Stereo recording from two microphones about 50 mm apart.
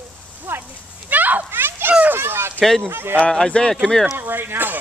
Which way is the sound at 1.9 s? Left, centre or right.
Right.